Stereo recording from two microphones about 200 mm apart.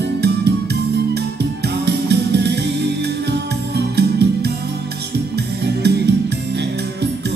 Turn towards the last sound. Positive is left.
turn(degrees=-55)  # may be behind; listen again after turning